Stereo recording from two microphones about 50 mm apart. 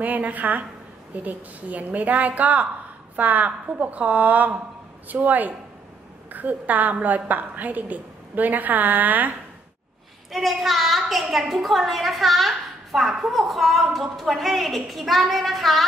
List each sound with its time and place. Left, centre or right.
0.0 s a woman's voice: right
10.3 s a woman's voice: centre